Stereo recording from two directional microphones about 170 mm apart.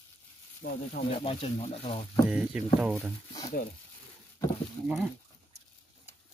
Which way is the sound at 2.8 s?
10° right (ahead or behind).